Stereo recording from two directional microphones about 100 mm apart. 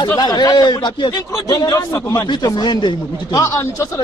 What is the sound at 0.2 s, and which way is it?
Speech, 45° left (ahead or behind).